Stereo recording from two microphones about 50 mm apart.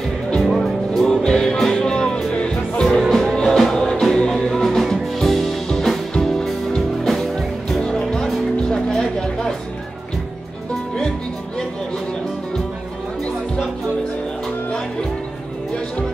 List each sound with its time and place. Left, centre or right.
0.4 s music: centre
3.0 s music: centre
3.3 s music: centre